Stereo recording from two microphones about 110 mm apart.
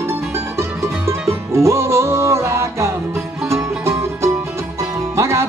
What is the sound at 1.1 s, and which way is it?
Music, 25° right (ahead or behind).